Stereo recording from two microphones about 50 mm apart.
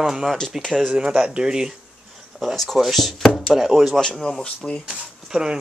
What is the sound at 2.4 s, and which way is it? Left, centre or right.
Speech, centre.